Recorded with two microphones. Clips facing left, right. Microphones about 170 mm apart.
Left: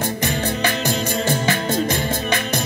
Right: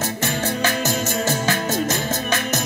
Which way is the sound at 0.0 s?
15° left (ahead or behind).